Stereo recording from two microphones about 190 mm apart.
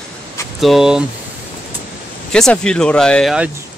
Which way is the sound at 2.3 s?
5° left (ahead or behind).